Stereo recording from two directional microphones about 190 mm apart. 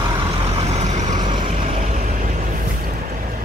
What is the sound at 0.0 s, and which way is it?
Vehicle, 25° right (ahead or behind).